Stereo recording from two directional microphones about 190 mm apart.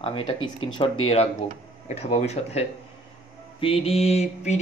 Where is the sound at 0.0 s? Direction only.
30° left (ahead or behind).